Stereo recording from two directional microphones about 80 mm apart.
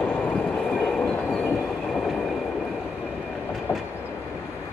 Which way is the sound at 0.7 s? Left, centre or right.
Centre.